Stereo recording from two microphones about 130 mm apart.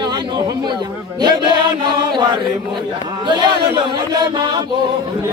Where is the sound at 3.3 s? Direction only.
35° right (ahead or behind).